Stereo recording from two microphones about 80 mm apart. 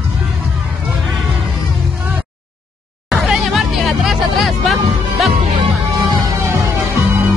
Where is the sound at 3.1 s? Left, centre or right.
Centre.